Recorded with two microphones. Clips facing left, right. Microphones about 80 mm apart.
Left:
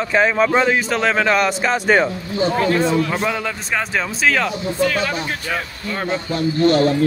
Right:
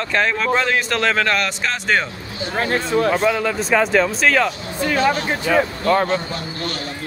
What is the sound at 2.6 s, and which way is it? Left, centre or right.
Speech, right.